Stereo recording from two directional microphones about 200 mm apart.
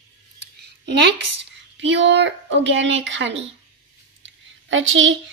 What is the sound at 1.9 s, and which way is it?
A woman's voice, 65° right (ahead or behind).